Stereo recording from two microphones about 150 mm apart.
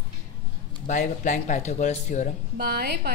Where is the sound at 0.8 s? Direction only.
55° left (ahead or behind).